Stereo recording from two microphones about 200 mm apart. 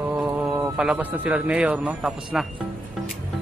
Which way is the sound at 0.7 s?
5° right (ahead or behind).